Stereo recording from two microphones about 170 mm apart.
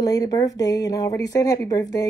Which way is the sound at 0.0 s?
20° left (ahead or behind).